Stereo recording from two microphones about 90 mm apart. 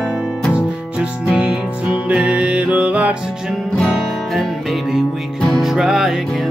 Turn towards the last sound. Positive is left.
turn(degrees=0)  # may be behind; listen again after turning